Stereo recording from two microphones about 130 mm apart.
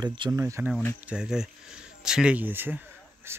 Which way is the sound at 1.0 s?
5° right (ahead or behind).